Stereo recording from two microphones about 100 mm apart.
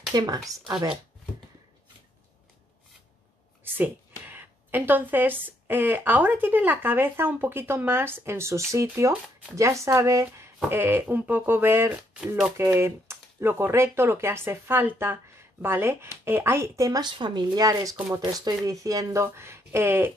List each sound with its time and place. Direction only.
0.1 s speech: 40° right (ahead or behind)
3.6 s speech: 20° right (ahead or behind)
17.0 s speech: 50° right (ahead or behind)
17.9 s speech: 20° right (ahead or behind)
18.2 s speech: 40° right (ahead or behind); by 20.1 s 25° right (ahead or behind)